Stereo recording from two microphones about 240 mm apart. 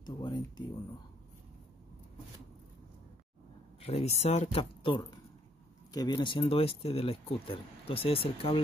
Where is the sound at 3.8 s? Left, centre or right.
Left.